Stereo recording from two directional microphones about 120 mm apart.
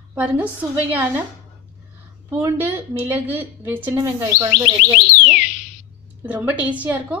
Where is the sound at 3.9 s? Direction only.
25° right (ahead or behind).